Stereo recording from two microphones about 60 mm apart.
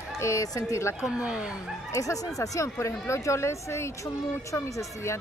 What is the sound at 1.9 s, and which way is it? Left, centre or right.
Speech, left.